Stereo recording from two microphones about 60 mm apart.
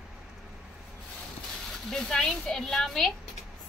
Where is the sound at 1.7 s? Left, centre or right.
Centre.